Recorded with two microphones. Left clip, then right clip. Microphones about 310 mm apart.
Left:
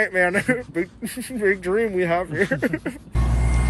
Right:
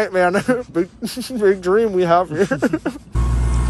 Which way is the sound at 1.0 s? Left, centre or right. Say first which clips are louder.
Right 5 dB; centre.